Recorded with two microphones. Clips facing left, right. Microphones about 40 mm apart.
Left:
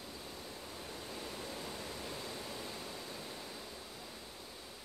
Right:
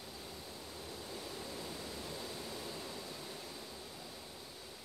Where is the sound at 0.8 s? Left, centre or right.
Left.